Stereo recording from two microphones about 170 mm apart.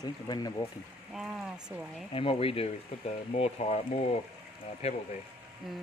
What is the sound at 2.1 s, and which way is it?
Speech, 30° left (ahead or behind).